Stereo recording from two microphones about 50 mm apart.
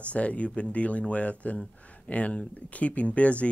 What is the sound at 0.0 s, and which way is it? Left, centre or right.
Speech, left.